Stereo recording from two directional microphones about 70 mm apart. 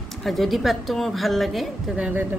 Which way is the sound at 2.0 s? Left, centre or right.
Centre.